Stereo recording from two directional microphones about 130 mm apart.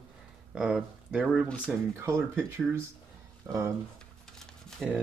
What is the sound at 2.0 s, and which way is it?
Speech, 20° right (ahead or behind).